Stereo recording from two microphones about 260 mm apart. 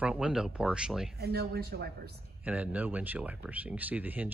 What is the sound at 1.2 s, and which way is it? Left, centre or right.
Speech, right.